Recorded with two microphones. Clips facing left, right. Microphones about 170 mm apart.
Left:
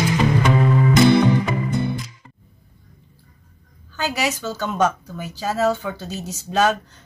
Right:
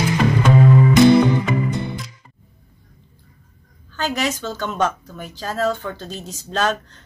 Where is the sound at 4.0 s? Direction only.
5° left (ahead or behind).